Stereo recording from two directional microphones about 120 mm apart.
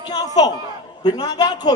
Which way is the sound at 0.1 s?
35° left (ahead or behind).